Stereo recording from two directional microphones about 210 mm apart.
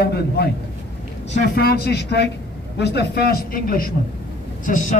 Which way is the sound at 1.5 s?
50° left (ahead or behind).